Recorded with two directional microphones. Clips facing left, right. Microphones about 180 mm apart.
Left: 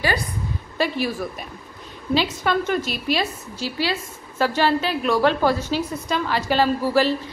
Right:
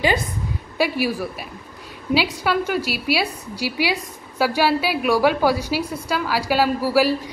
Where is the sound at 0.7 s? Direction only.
10° right (ahead or behind).